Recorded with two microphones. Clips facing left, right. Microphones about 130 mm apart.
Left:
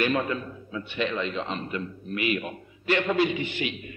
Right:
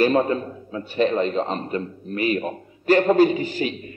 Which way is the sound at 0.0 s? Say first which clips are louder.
Right 7 dB; 35° right (ahead or behind).